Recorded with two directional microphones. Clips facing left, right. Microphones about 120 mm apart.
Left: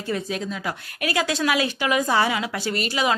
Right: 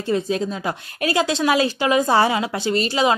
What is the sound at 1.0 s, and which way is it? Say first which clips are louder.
A woman's voice: right 4 dB; 25° right (ahead or behind).